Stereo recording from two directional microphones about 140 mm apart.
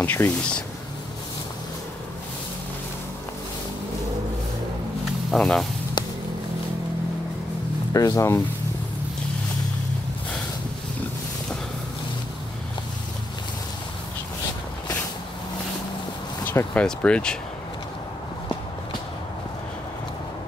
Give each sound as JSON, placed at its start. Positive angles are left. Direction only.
{"t": 0.0, "sound": "speech", "side_deg": 15}
{"t": 5.3, "sound": "speech", "side_deg": 0}
{"t": 6.0, "sound": "vehicle", "side_deg": 30}
{"t": 7.9, "sound": "speech", "side_deg": 25}
{"t": 16.4, "sound": "speech", "side_deg": 10}